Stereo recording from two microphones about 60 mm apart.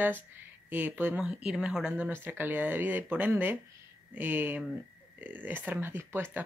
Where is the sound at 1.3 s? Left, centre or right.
Centre.